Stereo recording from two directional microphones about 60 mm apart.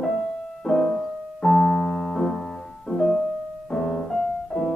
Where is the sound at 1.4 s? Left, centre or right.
Centre.